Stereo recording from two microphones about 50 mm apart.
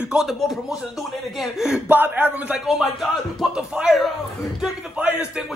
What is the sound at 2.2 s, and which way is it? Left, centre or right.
Speech, right.